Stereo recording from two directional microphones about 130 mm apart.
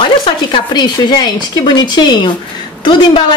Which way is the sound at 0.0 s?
40° left (ahead or behind).